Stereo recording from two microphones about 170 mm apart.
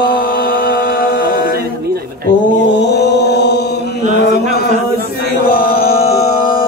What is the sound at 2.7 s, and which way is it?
Mantra, 85° left.